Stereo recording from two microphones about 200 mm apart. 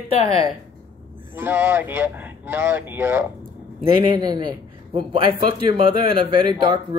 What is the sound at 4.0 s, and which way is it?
A man's voice, 20° right (ahead or behind).